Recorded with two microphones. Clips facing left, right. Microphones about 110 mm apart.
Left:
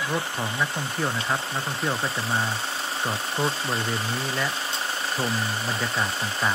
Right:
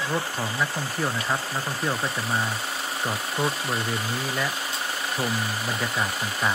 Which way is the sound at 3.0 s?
30° left (ahead or behind).